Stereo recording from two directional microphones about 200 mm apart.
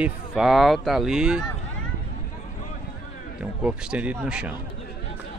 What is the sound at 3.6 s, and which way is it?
Speech, 5° right (ahead or behind).